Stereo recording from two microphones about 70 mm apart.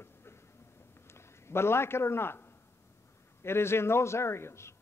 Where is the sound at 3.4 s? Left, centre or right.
Left.